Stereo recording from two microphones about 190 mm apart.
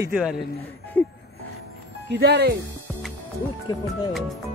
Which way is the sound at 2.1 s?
60° right (ahead or behind).